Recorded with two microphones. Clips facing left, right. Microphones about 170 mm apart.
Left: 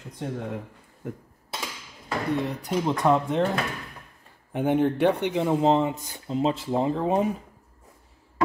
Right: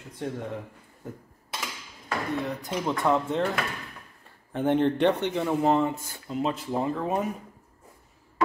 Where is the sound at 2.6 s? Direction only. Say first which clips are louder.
Left 4 dB; 15° left (ahead or behind).